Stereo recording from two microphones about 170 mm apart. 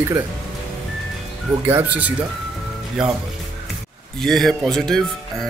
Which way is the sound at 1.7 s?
10° right (ahead or behind).